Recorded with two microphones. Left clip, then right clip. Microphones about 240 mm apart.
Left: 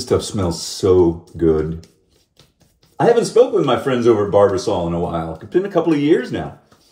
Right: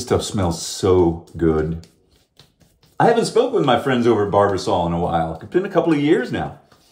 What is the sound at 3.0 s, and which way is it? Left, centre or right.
Speech, centre.